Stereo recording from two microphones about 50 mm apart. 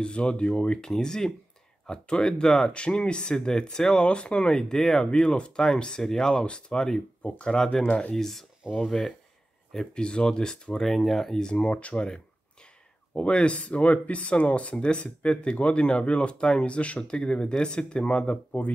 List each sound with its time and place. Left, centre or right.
0.0 s speech: centre
5.0 s speech: centre
10.9 s speech: centre; by 18.7 s left